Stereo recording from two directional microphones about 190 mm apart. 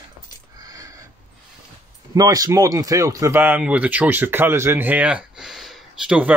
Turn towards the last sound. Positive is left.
turn(degrees=-5)  # may be behind; listen again after turning